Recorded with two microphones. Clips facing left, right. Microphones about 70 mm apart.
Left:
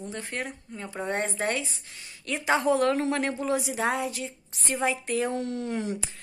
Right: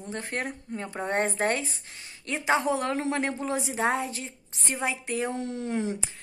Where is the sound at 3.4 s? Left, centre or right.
Right.